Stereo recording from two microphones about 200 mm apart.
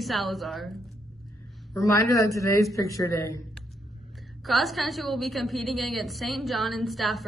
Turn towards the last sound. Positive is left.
turn(degrees=0)  # may be behind; listen again after turning